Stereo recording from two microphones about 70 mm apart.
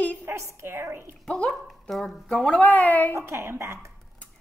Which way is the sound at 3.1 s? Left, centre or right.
Right.